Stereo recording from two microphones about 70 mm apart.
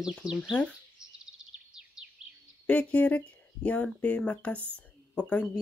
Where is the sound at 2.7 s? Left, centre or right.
Centre.